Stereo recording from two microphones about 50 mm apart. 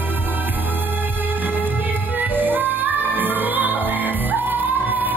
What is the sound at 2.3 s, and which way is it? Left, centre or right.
Music, right.